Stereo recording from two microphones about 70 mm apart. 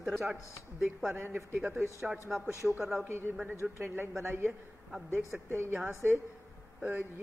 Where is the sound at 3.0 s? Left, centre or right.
Right.